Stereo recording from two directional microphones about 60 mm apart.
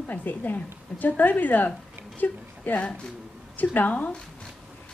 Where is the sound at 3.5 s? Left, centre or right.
Left.